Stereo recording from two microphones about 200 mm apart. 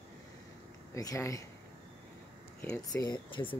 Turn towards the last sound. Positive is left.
turn(degrees=20)  # may be behind; listen again after turning